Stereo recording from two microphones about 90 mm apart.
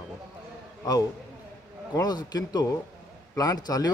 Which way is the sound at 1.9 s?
50° left (ahead or behind).